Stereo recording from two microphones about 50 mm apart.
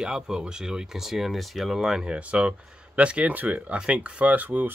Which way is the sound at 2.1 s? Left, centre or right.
Right.